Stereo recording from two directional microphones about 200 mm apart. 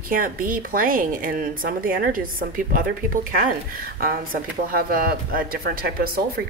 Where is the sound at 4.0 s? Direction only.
45° right (ahead or behind).